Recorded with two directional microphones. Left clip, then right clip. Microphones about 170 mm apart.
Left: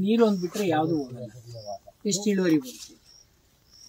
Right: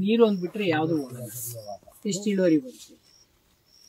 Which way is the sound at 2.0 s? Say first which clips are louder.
Right 1 dB; 15° left (ahead or behind).